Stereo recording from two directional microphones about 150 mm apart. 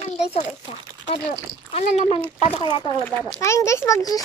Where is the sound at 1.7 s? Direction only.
45° left (ahead or behind).